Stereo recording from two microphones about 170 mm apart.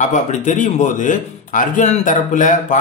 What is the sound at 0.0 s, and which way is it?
Speech, 45° left (ahead or behind).